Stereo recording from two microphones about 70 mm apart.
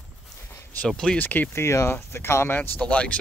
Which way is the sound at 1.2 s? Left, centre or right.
Left.